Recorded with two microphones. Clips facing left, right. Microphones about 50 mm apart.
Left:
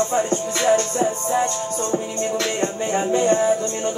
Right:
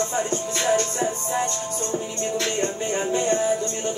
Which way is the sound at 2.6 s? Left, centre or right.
Centre.